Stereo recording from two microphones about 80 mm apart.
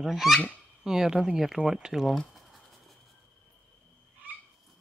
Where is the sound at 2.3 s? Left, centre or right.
Centre.